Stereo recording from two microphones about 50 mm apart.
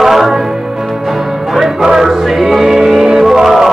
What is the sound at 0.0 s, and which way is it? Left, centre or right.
Music, centre.